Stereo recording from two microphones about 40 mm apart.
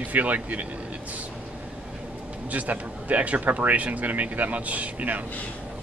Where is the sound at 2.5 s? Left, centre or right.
Right.